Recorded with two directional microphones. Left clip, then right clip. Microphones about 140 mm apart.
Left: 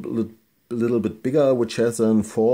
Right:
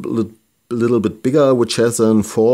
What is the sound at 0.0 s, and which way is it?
Speech, 40° right (ahead or behind).